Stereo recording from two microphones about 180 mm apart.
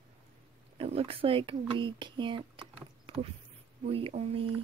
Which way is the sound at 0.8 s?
35° right (ahead or behind).